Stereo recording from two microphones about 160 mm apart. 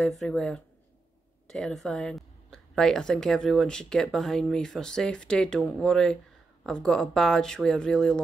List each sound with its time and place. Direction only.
0.0 s speech: centre (ahead or behind)